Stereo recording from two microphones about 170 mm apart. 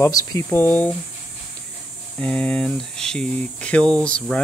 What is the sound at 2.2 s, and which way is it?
Speech, 5° left (ahead or behind).